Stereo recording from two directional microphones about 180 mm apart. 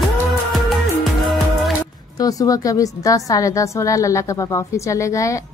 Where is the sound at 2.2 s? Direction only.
20° left (ahead or behind).